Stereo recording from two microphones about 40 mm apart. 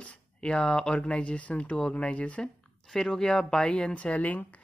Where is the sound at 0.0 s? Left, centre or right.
Left.